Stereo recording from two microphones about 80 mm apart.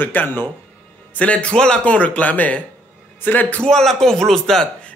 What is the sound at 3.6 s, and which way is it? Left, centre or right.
A man's voice, centre.